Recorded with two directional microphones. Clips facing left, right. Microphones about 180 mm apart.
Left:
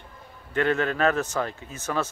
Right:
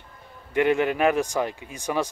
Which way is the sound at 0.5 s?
15° right (ahead or behind).